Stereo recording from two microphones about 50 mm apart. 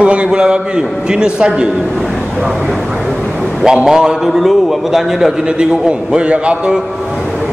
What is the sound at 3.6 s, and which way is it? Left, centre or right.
A man's voice, centre.